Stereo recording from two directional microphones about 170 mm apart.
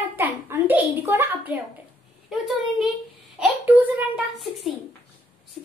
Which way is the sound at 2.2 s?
Centre (ahead or behind).